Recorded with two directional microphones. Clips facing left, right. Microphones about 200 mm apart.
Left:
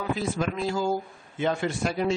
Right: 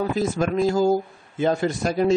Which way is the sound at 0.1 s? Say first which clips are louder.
Right 5 dB; 45° right (ahead or behind).